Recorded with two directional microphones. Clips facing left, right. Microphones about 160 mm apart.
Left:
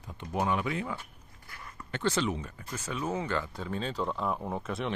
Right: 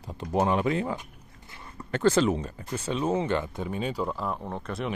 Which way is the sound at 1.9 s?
45° right (ahead or behind).